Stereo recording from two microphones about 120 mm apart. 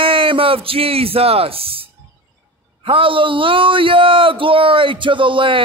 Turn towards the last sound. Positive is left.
turn(degrees=-45)  # may be behind; listen again after turning